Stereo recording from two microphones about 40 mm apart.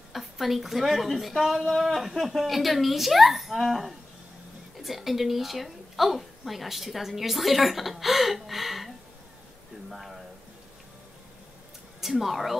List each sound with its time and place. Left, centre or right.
0.1 s a woman's voice: centre
9.8 s a sound: centre
12.0 s a woman's voice: centre